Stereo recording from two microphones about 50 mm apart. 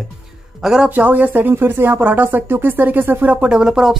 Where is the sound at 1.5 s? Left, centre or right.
Right.